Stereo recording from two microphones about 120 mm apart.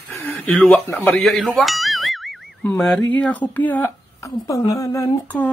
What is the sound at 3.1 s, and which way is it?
Speech, 15° left (ahead or behind).